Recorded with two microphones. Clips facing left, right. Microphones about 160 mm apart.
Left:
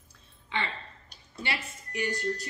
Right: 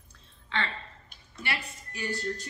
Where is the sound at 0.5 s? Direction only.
15° left (ahead or behind).